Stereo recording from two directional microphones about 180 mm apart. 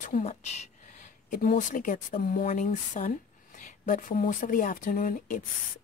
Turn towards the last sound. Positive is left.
turn(degrees=50)  # may be behind; listen again after turning